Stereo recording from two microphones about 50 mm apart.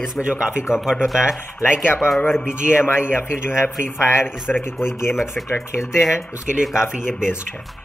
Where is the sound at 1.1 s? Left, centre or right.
Centre.